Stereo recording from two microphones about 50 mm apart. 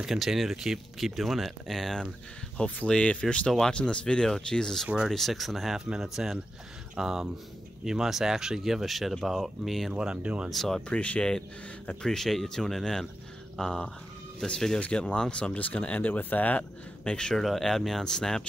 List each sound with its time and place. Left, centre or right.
0.0 s speech: centre
2.5 s speech: left; by 4.8 s centre
5.0 s speech: centre
9.9 s speech: right
10.5 s speech: centre
10.9 s speech: left
12.0 s speech: centre
14.8 s speech: left
17.0 s speech: centre
17.4 s speech: centre